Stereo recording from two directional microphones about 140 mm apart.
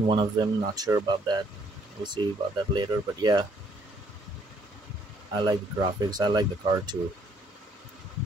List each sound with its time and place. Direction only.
0.1 s speech: 30° right (ahead or behind)
5.3 s speech: 30° right (ahead or behind)